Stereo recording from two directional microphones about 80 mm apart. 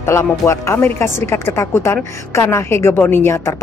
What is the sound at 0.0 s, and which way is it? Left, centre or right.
A man's voice, left.